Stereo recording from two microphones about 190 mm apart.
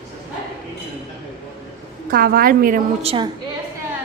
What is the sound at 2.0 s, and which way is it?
Speech, 50° right (ahead or behind).